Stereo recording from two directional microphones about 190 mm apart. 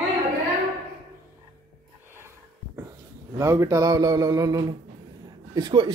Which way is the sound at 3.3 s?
15° right (ahead or behind).